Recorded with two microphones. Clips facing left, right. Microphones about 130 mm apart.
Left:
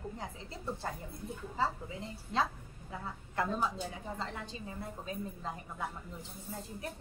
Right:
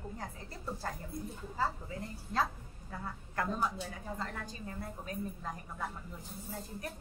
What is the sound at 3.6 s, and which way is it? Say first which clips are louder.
A woman's voice: left 1 dB; 20° left (ahead or behind).